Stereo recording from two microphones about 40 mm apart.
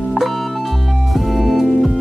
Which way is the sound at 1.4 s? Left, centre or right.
Centre.